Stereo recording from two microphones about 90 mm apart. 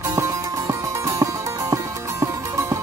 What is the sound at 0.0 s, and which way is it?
Music, 35° right (ahead or behind).